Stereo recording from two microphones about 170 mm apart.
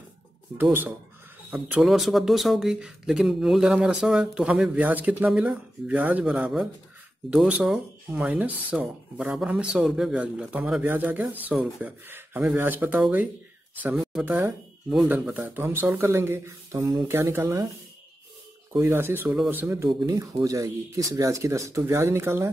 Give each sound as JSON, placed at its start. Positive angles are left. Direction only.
{"t": 0.6, "sound": "speech", "side_deg": -10}
{"t": 18.7, "sound": "speech", "side_deg": -15}